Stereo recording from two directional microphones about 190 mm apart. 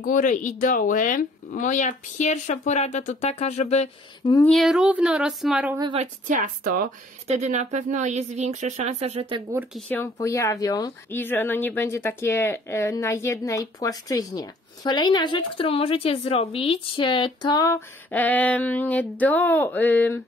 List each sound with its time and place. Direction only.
0.0 s speech: 45° left (ahead or behind)
4.2 s speech: 20° left (ahead or behind)
4.5 s speech: centre (ahead or behind)
5.8 s a woman's voice: 25° right (ahead or behind)
6.2 s speech: 45° right (ahead or behind)
7.2 s speech: 35° right (ahead or behind)
9.8 s speech: 10° left (ahead or behind)